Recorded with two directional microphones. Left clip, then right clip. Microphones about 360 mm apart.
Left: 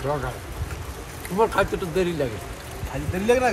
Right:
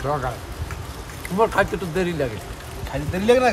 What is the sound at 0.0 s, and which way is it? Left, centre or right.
Speech, centre.